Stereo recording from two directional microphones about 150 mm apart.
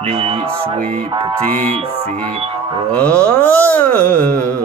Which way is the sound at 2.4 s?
40° right (ahead or behind).